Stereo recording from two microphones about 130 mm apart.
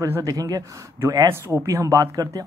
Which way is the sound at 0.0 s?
25° right (ahead or behind).